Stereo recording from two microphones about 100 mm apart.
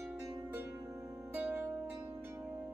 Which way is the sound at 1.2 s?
20° right (ahead or behind).